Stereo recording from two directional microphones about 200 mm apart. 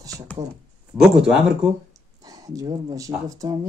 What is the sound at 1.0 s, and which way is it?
Speech, 5° right (ahead or behind).